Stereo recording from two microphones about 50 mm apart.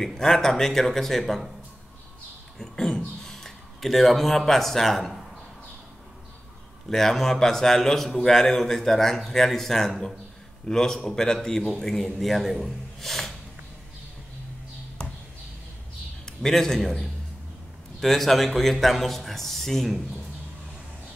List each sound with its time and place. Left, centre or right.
0.0 s a man's voice: centre
2.6 s a sound: centre
6.9 s a man's voice: centre
16.4 s a man's voice: centre